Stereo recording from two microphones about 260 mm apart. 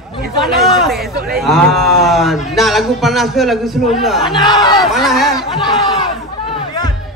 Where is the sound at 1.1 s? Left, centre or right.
Right.